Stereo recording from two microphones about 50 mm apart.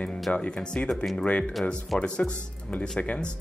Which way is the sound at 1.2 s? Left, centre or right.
Left.